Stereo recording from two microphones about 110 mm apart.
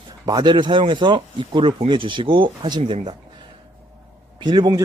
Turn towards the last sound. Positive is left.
turn(degrees=-40)  # may be behind; listen again after turning